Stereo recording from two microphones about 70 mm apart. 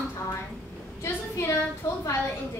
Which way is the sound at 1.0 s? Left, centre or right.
Left.